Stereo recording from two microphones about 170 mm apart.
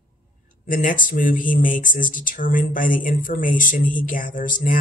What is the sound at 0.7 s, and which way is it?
Speech, 50° left (ahead or behind).